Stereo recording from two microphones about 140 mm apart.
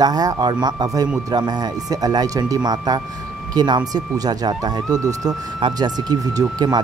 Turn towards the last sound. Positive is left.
turn(degrees=-25)  # may be behind; listen again after turning